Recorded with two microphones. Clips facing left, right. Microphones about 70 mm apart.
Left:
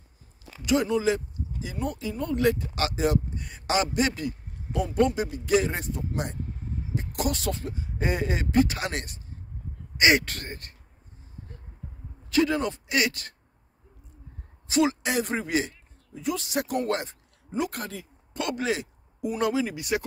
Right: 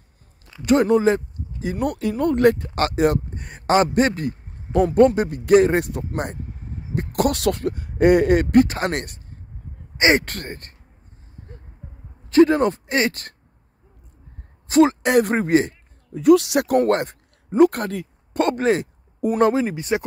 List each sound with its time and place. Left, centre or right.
0.7 s speech: right
1.8 s speech: right
8.6 s speech: right
9.9 s speech: right
10.2 s speech: right
12.3 s speech: right
14.7 s speech: right
18.5 s speech: right